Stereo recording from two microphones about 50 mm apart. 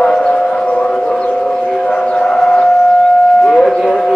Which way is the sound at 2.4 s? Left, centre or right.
Centre.